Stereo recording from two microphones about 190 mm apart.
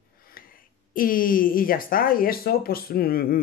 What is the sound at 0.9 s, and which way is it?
Speech, 45° left (ahead or behind).